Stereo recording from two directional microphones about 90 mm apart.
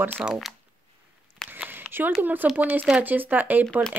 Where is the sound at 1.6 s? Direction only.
20° right (ahead or behind).